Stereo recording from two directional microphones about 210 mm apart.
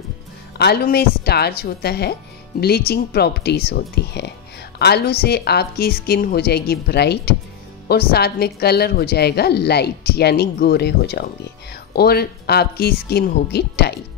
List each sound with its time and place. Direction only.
0.6 s a woman's voice: 50° left (ahead or behind)